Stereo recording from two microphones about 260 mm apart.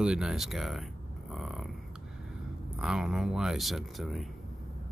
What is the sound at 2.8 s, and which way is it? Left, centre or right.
Speech, centre.